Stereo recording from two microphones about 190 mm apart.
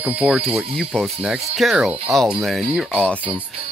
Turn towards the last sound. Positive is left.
turn(degrees=5)  # may be behind; listen again after turning